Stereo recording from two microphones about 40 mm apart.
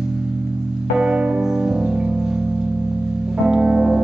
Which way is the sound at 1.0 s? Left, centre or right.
Centre.